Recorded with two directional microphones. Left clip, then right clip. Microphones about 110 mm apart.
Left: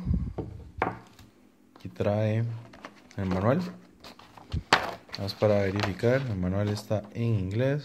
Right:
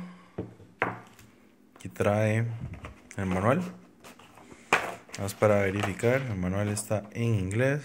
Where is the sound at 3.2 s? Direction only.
15° left (ahead or behind).